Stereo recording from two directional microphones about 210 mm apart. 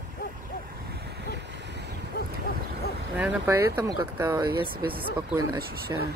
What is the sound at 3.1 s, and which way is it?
Speech, 10° right (ahead or behind).